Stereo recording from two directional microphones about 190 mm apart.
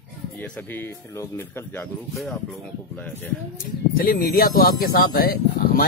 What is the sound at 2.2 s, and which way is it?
Speech, centre (ahead or behind).